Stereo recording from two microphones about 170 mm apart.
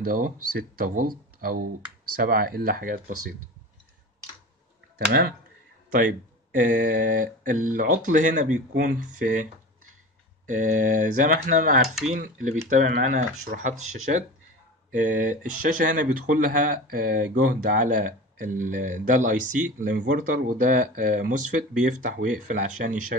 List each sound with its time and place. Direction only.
0.0 s speech: 55° right (ahead or behind)
4.9 s speech: 65° right (ahead or behind)
5.9 s speech: 50° right (ahead or behind)